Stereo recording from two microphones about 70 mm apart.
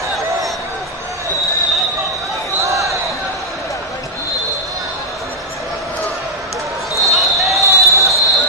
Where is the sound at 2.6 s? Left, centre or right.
Right.